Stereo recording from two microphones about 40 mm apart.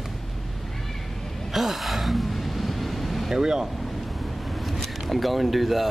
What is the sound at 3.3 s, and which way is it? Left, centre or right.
Speech, centre.